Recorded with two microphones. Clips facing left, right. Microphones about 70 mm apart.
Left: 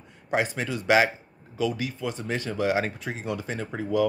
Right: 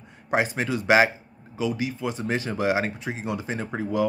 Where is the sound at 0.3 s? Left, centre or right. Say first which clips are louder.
Right 2 dB; right.